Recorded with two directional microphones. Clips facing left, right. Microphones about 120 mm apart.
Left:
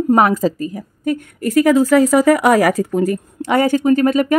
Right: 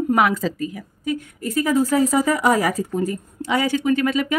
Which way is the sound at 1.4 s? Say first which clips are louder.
Left 7 dB; 80° left.